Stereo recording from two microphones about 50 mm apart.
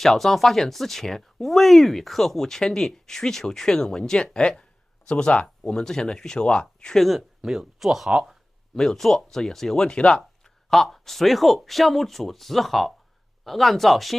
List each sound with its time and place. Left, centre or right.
0.0 s speech: centre
7.1 s speech: centre
8.7 s speech: centre
9.8 s speech: centre
10.4 s speech: centre